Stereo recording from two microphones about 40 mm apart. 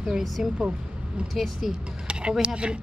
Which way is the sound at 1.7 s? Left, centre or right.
Right.